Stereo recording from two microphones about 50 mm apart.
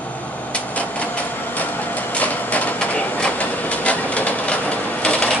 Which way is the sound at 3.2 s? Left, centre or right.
Left.